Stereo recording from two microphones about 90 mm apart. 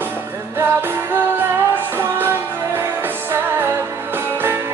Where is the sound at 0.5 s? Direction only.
25° right (ahead or behind).